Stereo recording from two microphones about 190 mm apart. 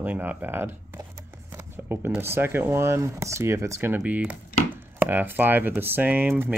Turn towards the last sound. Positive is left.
turn(degrees=-10)  # may be behind; listen again after turning